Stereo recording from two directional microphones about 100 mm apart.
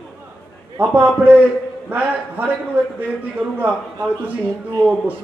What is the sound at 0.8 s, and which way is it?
Speech, 15° right (ahead or behind).